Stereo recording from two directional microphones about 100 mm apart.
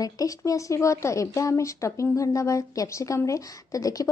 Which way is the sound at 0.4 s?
30° left (ahead or behind).